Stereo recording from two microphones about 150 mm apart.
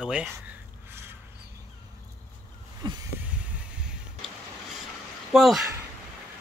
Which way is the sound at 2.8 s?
30° right (ahead or behind).